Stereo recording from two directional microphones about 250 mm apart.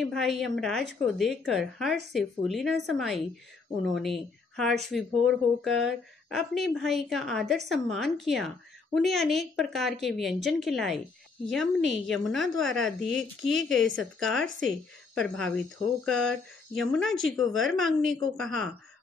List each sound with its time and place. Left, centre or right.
0.0 s a woman's voice: centre